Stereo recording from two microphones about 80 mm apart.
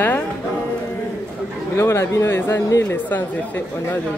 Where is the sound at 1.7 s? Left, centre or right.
Left.